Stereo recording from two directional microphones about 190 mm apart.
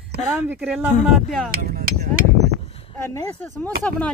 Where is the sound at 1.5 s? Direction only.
50° right (ahead or behind).